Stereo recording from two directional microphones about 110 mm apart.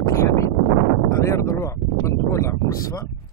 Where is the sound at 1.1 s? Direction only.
25° left (ahead or behind).